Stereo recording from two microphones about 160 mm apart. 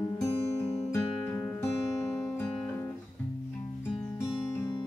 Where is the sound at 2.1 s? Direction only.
20° left (ahead or behind).